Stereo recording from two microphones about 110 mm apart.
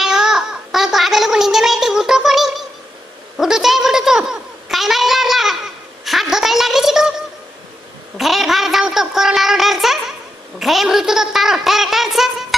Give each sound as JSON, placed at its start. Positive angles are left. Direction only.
{"t": 0.0, "sound": "gargling", "side_deg": -5}
{"t": 3.3, "sound": "a sound", "side_deg": -5}
{"t": 8.2, "sound": "child singing", "side_deg": 0}
{"t": 10.6, "sound": "toothbrush", "side_deg": 0}